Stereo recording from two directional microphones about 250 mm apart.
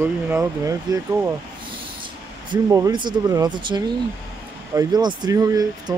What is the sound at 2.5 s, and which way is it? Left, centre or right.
Speech, centre.